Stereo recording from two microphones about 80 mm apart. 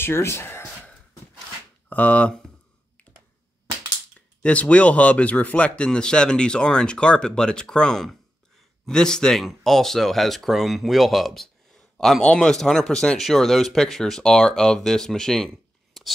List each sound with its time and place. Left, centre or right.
0.0 s speech: left
1.9 s speech: centre
4.4 s speech: centre